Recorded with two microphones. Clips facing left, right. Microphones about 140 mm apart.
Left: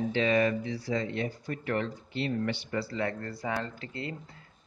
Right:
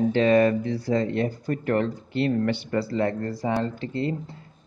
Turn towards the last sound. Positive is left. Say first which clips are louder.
# right 10 dB
turn(degrees=-30)  # may be behind; listen again after turning